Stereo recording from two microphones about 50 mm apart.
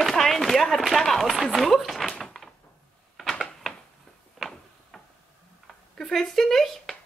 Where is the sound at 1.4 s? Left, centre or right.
Centre.